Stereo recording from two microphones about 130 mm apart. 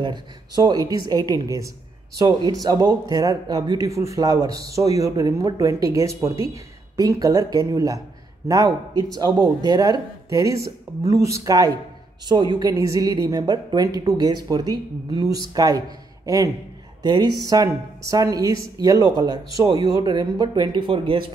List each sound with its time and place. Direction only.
0.0 s a man's voice: 35° right (ahead or behind)
17.0 s speech: 35° right (ahead or behind)